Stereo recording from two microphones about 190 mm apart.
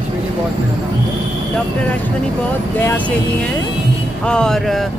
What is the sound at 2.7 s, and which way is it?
Speech, 10° left (ahead or behind).